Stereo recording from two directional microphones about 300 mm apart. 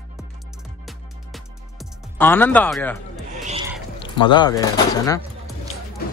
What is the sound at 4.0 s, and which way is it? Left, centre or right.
Speech, centre.